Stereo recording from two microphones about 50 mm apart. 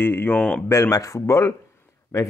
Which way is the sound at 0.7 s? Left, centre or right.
Left.